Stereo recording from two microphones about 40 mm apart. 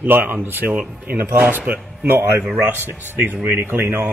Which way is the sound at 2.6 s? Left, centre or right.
Right.